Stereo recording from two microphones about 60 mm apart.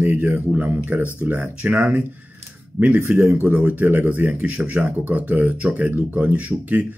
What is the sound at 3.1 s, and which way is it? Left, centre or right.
Speech, centre.